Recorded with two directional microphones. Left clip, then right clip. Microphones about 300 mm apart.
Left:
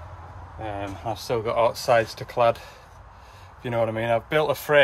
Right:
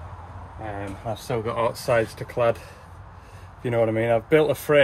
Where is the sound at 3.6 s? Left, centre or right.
Centre.